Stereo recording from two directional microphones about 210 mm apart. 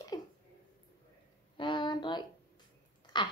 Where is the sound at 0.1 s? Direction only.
20° left (ahead or behind).